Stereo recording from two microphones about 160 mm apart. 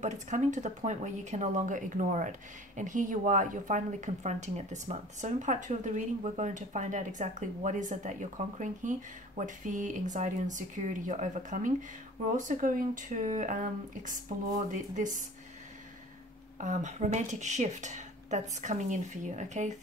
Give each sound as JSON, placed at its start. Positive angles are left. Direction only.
{"t": 0.0, "sound": "speech", "side_deg": -50}
{"t": 16.5, "sound": "speech", "side_deg": -50}